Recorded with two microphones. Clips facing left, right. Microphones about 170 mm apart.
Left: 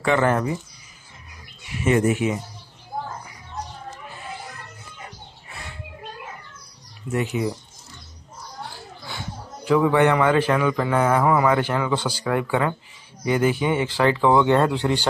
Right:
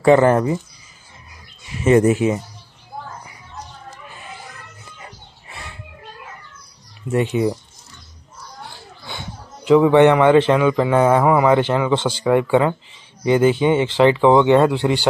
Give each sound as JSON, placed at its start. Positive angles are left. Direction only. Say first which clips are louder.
{"t": 0.0, "sound": "speech", "louder": "right 7 dB", "side_deg": -35}
{"t": 1.9, "sound": "speech", "louder": "right 6 dB", "side_deg": -35}
{"t": 7.1, "sound": "a man's voice", "louder": "right 5 dB", "side_deg": -30}
{"t": 9.7, "sound": "a man's voice", "louder": "right 6 dB", "side_deg": -20}